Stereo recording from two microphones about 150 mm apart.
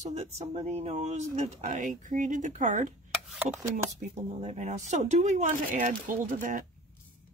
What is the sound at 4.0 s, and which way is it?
Speech, 50° right (ahead or behind).